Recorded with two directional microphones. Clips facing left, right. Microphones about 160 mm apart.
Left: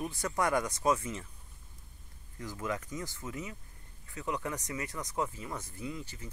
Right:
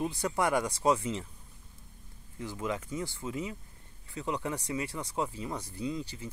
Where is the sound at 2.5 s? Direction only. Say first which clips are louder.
Right 2 dB; 20° right (ahead or behind).